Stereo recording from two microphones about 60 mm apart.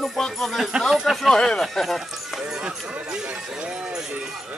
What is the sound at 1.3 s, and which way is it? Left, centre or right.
Speech, centre.